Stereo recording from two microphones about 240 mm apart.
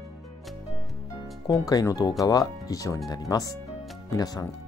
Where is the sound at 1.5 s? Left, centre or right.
Centre.